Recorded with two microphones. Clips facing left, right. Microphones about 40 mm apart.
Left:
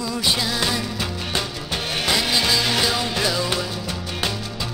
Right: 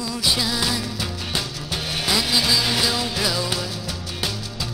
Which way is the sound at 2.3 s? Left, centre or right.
Centre.